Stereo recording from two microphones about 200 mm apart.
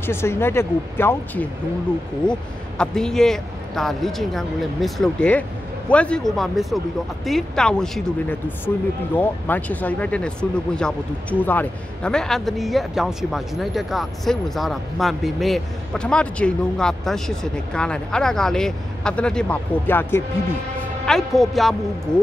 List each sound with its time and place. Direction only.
0.0 s speech: 10° left (ahead or behind)
2.8 s a man's voice: 5° left (ahead or behind)